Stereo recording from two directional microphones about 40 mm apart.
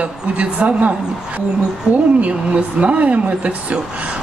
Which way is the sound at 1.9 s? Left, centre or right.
Right.